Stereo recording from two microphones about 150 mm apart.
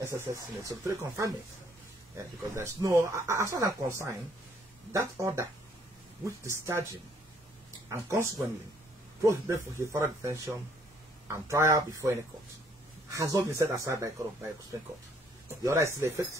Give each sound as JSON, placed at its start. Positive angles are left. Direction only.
{"t": 0.0, "sound": "speech", "side_deg": -20}
{"t": 4.9, "sound": "speech", "side_deg": -20}
{"t": 7.9, "sound": "speech", "side_deg": -20}